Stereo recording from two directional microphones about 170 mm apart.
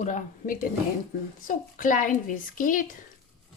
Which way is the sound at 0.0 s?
50° left (ahead or behind).